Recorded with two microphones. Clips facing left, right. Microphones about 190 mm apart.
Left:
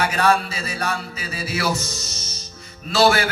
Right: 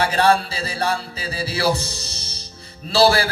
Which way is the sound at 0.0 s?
30° right (ahead or behind).